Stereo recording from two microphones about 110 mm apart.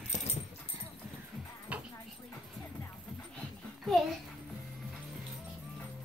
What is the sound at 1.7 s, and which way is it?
Music, 10° right (ahead or behind).